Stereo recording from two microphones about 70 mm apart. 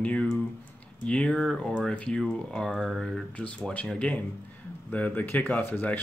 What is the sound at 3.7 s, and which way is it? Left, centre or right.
Speech, centre.